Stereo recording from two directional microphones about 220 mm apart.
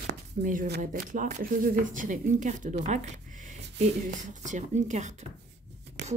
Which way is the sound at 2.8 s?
30° right (ahead or behind).